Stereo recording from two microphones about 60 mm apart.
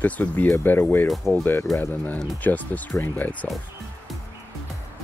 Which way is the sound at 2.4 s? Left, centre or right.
Left.